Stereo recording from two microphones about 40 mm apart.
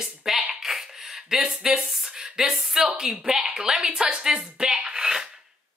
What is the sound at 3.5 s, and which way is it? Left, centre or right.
Speech, centre.